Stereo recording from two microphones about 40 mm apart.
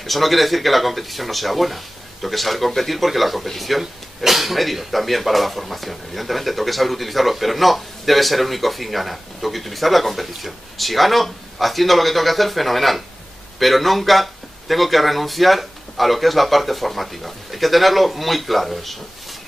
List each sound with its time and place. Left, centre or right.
0.0 s speech: centre